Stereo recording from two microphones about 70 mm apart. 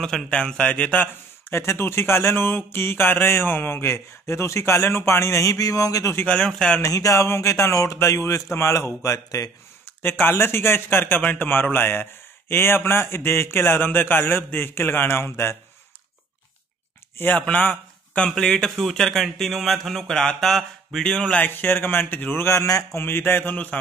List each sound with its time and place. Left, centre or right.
0.0 s speech: centre
1.5 s speech: left
6.2 s speech: centre
6.8 s speech: left
10.0 s speech: left
17.4 s speech: left
18.3 s speech: centre
21.4 s speech: left
22.4 s speech: left
22.9 s speech: left
23.5 s speech: left